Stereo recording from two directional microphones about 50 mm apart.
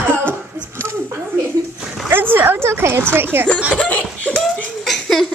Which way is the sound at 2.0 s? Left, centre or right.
Right.